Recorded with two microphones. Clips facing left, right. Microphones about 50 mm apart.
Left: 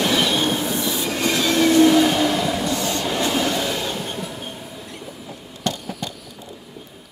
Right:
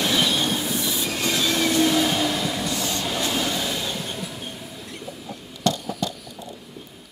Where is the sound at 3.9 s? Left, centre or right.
Centre.